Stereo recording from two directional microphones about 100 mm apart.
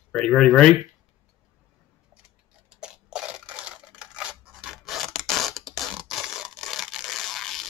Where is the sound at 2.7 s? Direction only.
10° right (ahead or behind).